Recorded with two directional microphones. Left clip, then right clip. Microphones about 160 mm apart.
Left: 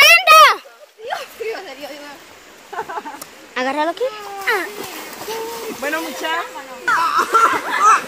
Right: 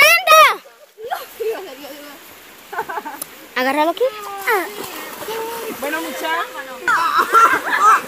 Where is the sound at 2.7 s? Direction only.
Centre (ahead or behind).